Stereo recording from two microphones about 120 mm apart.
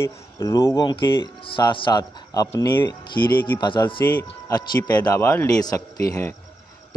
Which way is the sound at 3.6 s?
40° left (ahead or behind).